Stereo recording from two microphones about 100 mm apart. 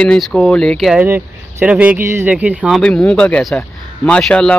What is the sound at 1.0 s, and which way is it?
Speech, 20° right (ahead or behind).